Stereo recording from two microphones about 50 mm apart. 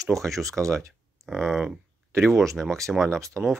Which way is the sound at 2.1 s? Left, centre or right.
Right.